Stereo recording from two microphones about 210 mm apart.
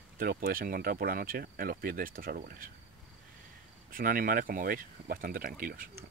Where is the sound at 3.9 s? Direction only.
45° right (ahead or behind).